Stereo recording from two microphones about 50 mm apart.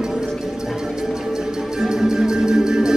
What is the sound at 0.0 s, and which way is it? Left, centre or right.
Music, centre.